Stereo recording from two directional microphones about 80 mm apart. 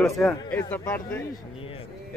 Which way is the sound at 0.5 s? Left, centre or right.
Centre.